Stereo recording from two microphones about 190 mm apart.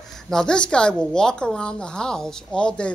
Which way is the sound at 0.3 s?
5° left (ahead or behind).